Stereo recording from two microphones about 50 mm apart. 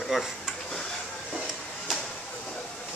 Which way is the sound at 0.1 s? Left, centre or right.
Centre.